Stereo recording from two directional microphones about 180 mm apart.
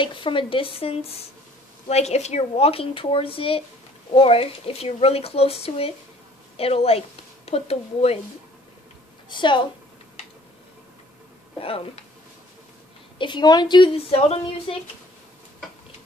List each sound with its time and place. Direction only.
0.0 s a woman's voice: 25° left (ahead or behind)
9.3 s speech: 25° left (ahead or behind)
11.6 s speech: 30° left (ahead or behind)
13.2 s speech: 25° left (ahead or behind)